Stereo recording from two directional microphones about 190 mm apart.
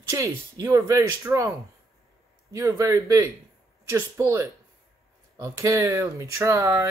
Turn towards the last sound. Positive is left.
turn(degrees=-15)  # may be behind; listen again after turning